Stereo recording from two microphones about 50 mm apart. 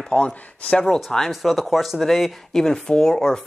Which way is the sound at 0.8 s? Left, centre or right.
Centre.